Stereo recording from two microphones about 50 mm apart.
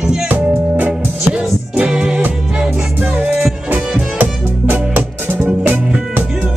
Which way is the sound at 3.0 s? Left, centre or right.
Right.